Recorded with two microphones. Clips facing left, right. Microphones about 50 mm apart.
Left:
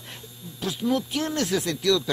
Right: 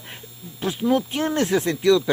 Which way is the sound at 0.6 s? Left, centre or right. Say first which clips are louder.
Right 4 dB; right.